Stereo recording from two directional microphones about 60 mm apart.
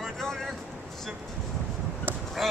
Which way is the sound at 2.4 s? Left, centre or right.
Centre.